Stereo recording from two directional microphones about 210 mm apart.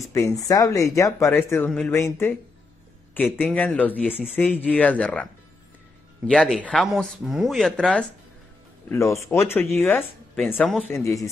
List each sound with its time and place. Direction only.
0.0 s speech: 15° left (ahead or behind)
3.3 s speech: 5° left (ahead or behind)